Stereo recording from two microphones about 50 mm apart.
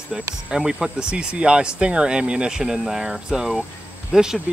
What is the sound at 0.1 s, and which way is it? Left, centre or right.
Speech, centre.